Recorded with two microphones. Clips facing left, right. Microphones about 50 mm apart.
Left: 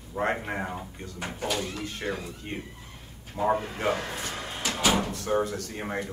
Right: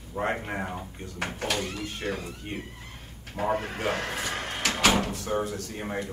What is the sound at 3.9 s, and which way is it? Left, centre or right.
Drawer open or close, right.